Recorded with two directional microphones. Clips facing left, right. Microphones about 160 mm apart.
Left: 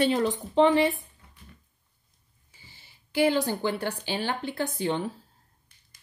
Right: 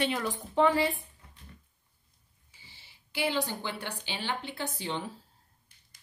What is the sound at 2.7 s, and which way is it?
Speech, 45° left (ahead or behind).